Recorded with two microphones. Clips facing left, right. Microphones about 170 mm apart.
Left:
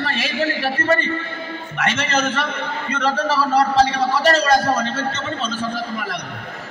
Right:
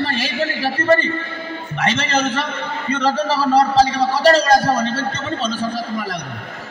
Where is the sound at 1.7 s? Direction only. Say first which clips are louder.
Right 2 dB; 30° right (ahead or behind).